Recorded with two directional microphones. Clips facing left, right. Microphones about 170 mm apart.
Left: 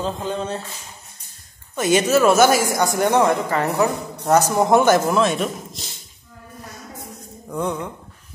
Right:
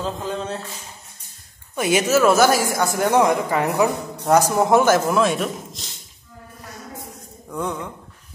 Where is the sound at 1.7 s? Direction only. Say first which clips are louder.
Left 2 dB; 10° right (ahead or behind).